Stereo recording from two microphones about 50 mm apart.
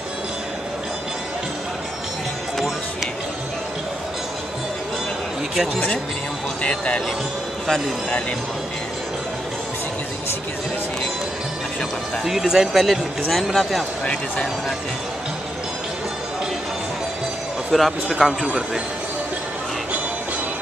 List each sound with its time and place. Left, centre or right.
6.6 s speech: left
12.3 s speech: centre
17.7 s speech: centre
18.1 s a man's voice: centre